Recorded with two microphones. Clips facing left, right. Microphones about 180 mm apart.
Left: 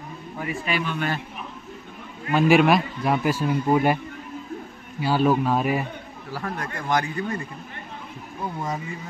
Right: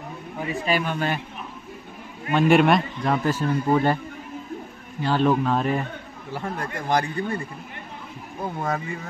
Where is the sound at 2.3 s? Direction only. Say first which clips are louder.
Even; centre (ahead or behind).